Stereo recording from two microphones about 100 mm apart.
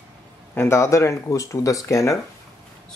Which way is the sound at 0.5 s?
25° left (ahead or behind).